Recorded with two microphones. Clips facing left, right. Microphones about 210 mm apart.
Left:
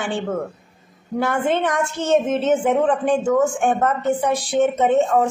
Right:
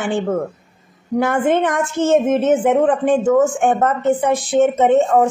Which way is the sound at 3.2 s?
55° right (ahead or behind).